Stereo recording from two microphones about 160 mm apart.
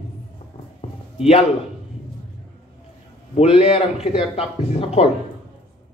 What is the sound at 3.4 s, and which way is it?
A man's voice, 35° left (ahead or behind).